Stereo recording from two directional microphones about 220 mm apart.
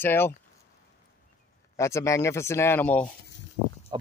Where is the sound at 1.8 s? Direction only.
15° left (ahead or behind).